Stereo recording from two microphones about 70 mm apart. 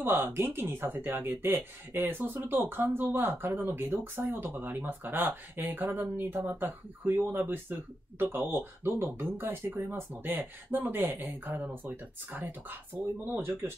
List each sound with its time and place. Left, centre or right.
0.0 s speech: right